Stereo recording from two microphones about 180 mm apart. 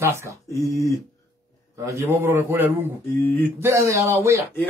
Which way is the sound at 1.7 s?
15° right (ahead or behind).